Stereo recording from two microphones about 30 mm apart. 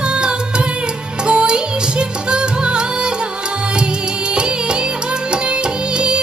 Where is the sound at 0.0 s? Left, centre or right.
Right.